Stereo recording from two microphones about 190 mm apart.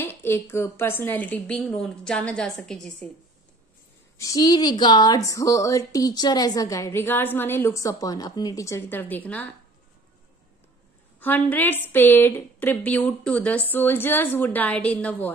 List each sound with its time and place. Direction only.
0.0 s speech: 10° left (ahead or behind)
4.2 s speech: 20° left (ahead or behind)
11.1 s speech: 10° left (ahead or behind)